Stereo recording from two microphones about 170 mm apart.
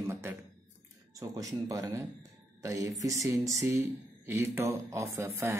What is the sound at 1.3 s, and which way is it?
Speech, 20° right (ahead or behind).